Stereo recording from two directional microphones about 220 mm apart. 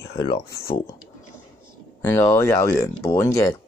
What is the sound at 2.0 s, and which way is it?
Speech, 15° left (ahead or behind).